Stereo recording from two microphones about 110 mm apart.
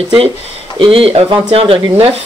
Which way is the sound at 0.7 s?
55° right (ahead or behind).